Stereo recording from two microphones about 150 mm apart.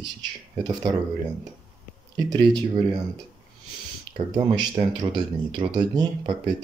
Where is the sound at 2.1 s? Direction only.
30° right (ahead or behind).